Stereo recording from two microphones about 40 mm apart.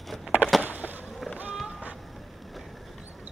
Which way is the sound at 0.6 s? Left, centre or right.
Right.